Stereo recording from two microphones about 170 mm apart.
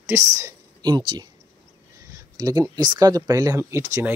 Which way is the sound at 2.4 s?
20° right (ahead or behind).